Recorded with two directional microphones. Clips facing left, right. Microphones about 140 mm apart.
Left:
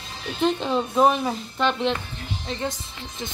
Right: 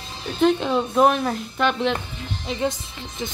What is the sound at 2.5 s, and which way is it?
Speech, 15° right (ahead or behind).